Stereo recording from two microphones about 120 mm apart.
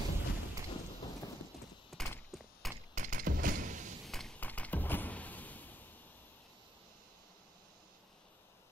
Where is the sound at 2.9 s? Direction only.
90° right.